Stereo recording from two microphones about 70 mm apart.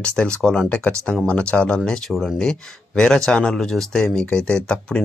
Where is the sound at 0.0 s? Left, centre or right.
Centre.